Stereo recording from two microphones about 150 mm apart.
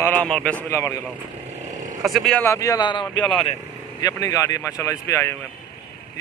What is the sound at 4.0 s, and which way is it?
Speech, 25° left (ahead or behind).